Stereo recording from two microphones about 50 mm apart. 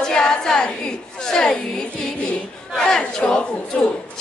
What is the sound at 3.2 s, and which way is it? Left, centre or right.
Speech, left.